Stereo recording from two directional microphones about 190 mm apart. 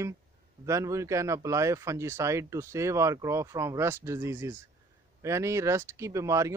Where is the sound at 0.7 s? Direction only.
15° right (ahead or behind).